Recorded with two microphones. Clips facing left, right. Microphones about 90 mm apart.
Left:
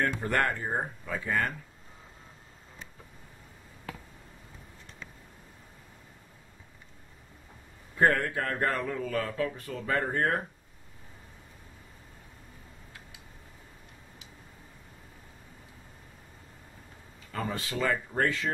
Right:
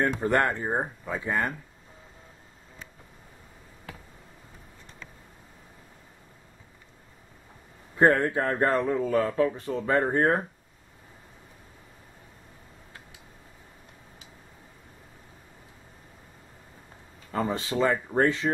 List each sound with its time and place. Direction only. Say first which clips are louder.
0.0 s speech: right 4 dB; 20° right (ahead or behind)
8.0 s speech: right 4 dB; 25° right (ahead or behind)
17.3 s speech: right 6 dB; 25° right (ahead or behind)